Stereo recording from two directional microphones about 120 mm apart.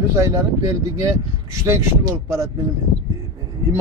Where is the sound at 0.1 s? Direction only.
25° right (ahead or behind).